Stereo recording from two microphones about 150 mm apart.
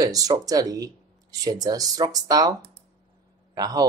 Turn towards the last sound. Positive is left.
turn(degrees=-25)  # may be behind; listen again after turning